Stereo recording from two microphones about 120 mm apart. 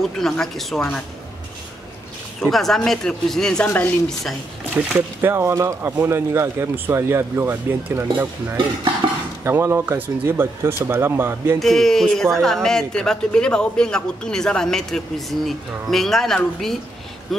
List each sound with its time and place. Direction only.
0.2 s a man's voice: centre (ahead or behind)
2.4 s a man's voice: centre (ahead or behind)
4.8 s speech: 15° right (ahead or behind)
11.6 s a man's voice: 5° left (ahead or behind)